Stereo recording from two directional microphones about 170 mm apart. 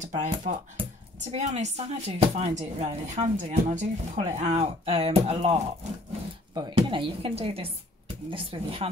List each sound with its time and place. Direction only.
0.0 s speech: 45° right (ahead or behind)